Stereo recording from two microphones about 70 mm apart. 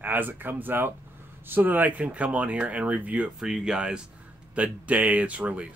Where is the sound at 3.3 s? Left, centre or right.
Centre.